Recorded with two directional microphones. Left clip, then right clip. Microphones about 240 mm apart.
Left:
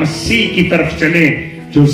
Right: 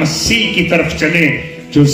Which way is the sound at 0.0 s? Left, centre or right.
Right.